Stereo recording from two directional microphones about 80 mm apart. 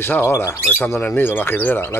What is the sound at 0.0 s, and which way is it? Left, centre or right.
Speech, left.